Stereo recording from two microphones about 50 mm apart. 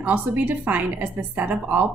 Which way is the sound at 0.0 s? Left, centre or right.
Right.